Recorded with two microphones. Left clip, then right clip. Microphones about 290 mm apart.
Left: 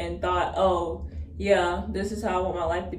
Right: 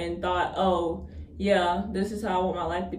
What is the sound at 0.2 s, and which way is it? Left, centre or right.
Speech, centre.